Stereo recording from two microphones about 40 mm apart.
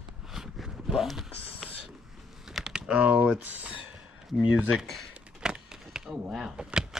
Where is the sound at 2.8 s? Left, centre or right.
Right.